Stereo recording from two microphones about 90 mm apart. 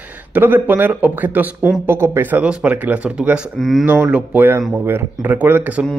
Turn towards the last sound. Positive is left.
turn(degrees=-15)  # may be behind; listen again after turning